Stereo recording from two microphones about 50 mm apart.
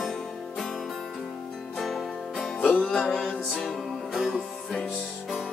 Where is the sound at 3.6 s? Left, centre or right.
Centre.